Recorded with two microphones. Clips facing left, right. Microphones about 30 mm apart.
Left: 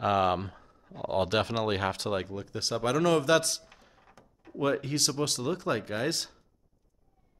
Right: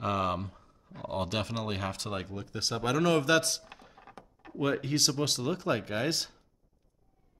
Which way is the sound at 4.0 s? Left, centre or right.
Right.